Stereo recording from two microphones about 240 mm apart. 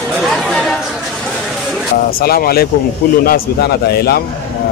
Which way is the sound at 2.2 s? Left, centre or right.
Left.